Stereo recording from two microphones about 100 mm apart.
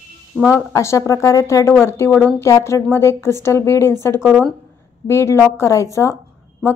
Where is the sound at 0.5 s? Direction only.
30° left (ahead or behind).